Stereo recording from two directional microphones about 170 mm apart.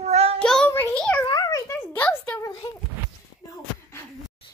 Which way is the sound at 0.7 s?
15° left (ahead or behind).